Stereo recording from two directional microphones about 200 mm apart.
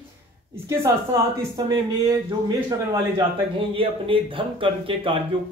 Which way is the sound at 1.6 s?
20° right (ahead or behind).